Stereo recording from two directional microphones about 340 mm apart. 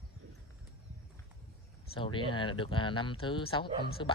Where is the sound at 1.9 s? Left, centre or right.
Centre.